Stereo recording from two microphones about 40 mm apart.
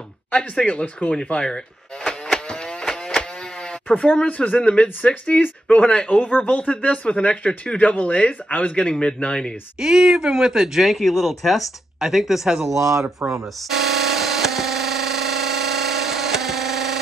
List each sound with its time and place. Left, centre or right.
0.3 s speech: left
2.3 s a sound: left
4.0 s speech: left
9.8 s speech: centre
10.9 s speech: centre
13.2 s speech: right
13.7 s a sound: centre